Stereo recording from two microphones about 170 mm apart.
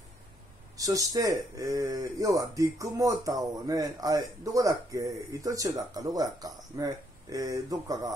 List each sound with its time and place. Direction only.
0.7 s speech: 20° right (ahead or behind)